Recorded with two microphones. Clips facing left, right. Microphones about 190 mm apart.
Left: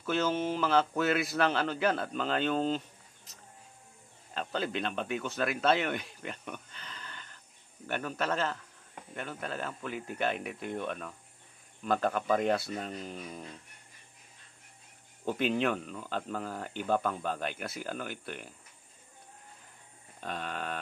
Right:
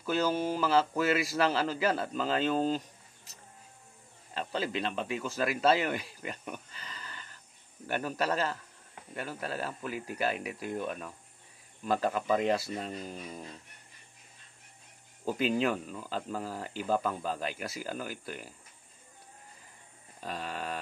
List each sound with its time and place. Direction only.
0.0 s mantra: 40° right (ahead or behind)
0.5 s speech: 5° right (ahead or behind)
4.3 s speech: centre (ahead or behind)
6.4 s a sound: 5° right (ahead or behind)
8.0 s a man's voice: 5° right (ahead or behind)
9.8 s speech: 5° right (ahead or behind)
15.2 s speech: 5° right (ahead or behind)
20.2 s speech: 5° right (ahead or behind)